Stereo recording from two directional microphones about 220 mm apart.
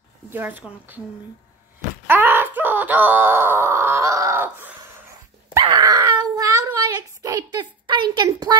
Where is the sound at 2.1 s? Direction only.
10° right (ahead or behind).